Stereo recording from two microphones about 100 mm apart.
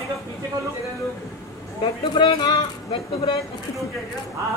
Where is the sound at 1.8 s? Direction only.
50° left (ahead or behind).